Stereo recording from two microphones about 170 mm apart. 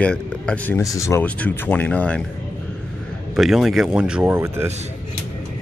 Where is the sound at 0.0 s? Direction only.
10° left (ahead or behind).